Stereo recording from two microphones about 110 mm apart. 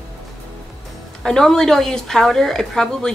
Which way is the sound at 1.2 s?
5° left (ahead or behind).